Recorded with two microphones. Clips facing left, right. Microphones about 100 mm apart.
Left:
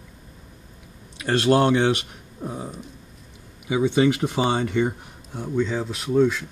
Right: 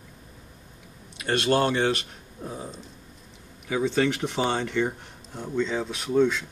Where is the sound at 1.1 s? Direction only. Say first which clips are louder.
Left 4 dB; 20° left (ahead or behind).